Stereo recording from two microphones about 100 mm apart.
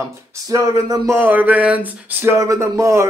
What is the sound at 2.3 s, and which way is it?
Speech, 30° right (ahead or behind).